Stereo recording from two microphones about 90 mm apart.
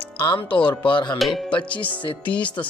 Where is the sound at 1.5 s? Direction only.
65° left (ahead or behind).